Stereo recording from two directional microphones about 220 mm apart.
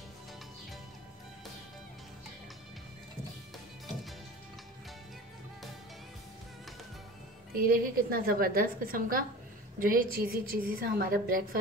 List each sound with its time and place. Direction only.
7.5 s a woman's voice: 40° right (ahead or behind)